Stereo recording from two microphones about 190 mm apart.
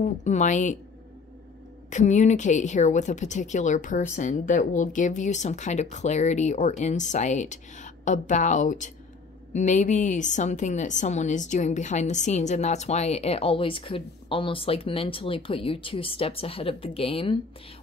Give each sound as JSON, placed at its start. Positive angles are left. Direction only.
{"t": 0.0, "sound": "a woman's voice", "side_deg": 40}
{"t": 1.9, "sound": "a woman's voice", "side_deg": 40}